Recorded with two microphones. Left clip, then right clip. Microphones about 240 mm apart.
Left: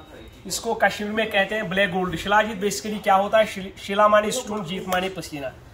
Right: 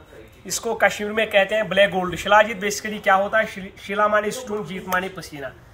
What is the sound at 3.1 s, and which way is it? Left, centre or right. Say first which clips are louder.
A man's voice: left 1 dB; centre.